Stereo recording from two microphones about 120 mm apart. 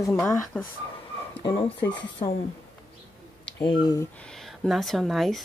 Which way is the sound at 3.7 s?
40° left (ahead or behind).